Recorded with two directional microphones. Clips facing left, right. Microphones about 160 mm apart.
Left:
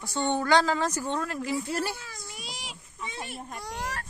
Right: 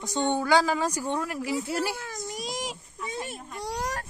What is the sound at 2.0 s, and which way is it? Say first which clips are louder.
A child's voice: right 8 dB; 45° right (ahead or behind).